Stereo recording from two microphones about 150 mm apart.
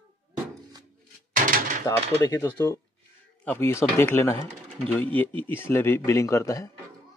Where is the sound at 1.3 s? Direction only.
65° right (ahead or behind).